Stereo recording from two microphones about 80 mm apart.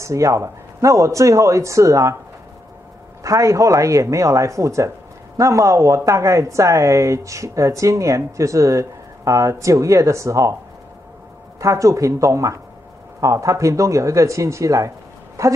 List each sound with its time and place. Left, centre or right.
0.0 s speech: right
3.3 s speech: right
11.6 s speech: right